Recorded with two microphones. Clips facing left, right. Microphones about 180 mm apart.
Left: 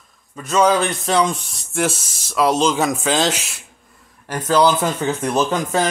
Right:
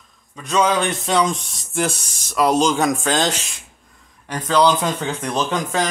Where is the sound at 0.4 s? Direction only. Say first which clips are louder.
Left 2 dB; 5° left (ahead or behind).